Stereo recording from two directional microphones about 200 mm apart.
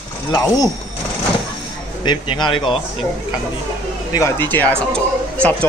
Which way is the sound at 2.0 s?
25° left (ahead or behind).